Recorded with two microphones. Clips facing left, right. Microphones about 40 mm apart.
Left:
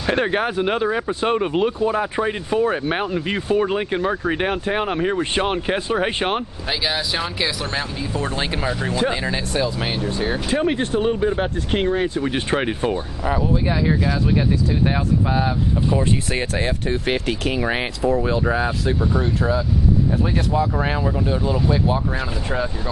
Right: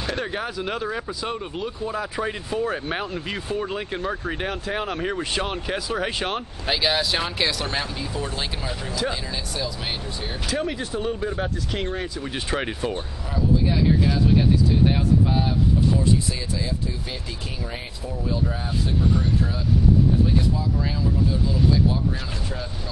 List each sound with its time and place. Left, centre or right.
0.0 s speech: left
0.8 s speech: left
1.2 s speech: left
6.7 s speech: centre
8.1 s speech: left
14.9 s speech: centre
16.0 s speech: left
20.5 s speech: left